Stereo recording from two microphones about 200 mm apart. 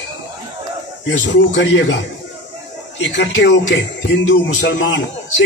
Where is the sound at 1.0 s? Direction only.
70° left (ahead or behind).